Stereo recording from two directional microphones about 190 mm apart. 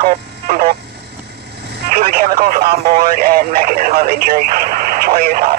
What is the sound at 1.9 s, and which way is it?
Speech, 50° right (ahead or behind).